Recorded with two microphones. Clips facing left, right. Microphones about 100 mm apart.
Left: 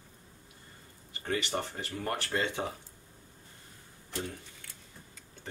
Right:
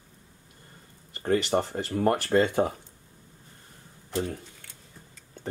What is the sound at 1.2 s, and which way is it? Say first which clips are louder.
Speech: right 9 dB; 40° right (ahead or behind).